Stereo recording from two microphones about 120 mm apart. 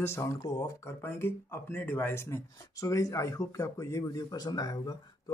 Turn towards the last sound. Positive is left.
turn(degrees=30)  # may be behind; listen again after turning